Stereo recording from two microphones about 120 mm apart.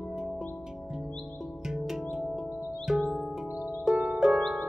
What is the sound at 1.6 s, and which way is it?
Music, 5° right (ahead or behind).